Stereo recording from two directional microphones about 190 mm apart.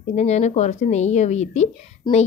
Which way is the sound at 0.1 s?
35° left (ahead or behind).